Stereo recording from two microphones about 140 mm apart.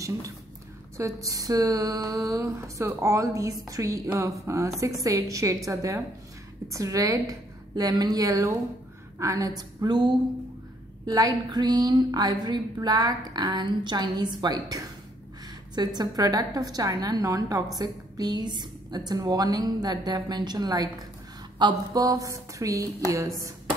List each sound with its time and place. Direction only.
0.9 s a woman's voice: 25° right (ahead or behind)